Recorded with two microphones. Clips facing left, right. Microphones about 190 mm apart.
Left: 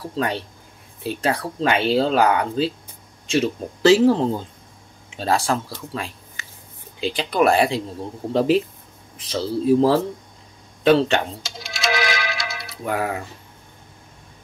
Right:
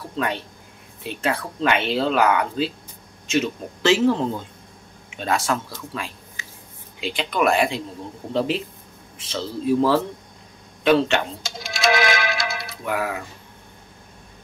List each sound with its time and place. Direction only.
1.0 s speech: 35° left (ahead or behind)
11.4 s music: 50° right (ahead or behind)
12.8 s speech: 35° left (ahead or behind)